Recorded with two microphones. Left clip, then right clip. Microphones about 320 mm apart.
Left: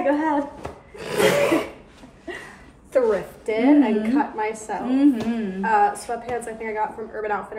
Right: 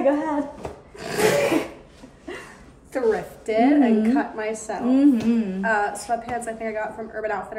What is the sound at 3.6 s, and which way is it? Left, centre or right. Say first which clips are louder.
A woman's voice: even; centre.